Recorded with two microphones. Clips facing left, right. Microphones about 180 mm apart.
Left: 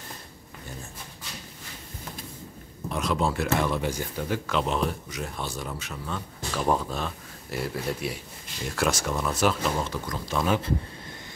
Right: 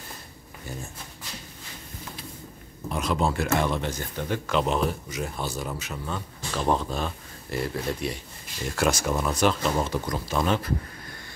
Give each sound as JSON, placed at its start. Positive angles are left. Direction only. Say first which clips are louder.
{"t": 2.9, "sound": "speech", "louder": "right 1 dB", "side_deg": 0}
{"t": 9.8, "sound": "speech", "louder": "right 4 dB", "side_deg": -15}
{"t": 10.2, "sound": "speech", "louder": "left 1 dB", "side_deg": -5}